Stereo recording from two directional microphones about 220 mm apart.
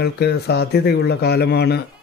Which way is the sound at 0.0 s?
50° left (ahead or behind).